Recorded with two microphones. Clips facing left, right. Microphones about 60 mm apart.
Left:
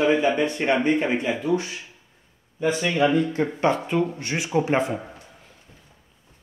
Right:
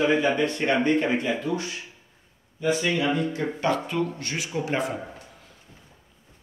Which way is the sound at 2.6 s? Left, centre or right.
Left.